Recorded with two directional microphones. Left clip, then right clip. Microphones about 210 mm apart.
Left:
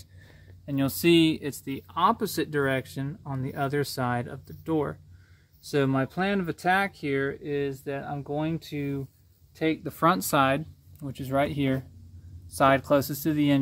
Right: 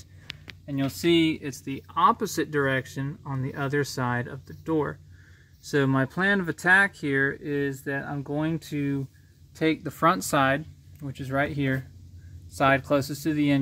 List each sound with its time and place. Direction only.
0.7 s speech: 20° left (ahead or behind); by 9.0 s 10° right (ahead or behind)
9.8 s speech: 5° left (ahead or behind)